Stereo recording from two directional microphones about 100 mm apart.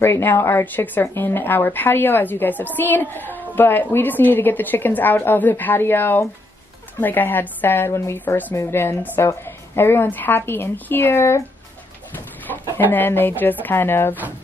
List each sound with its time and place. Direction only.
0.0 s a woman's voice: 25° left (ahead or behind)
12.7 s a woman's voice: 20° left (ahead or behind)